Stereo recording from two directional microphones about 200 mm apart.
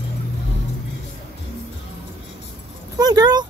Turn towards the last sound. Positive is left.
turn(degrees=-20)  # may be behind; listen again after turning